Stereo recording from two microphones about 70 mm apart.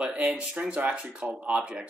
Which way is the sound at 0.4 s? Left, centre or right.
Centre.